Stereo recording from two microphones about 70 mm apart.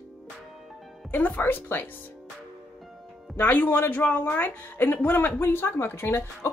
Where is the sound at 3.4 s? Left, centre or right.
Left.